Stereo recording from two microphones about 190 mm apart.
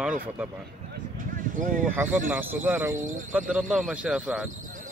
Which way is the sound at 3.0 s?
40° right (ahead or behind).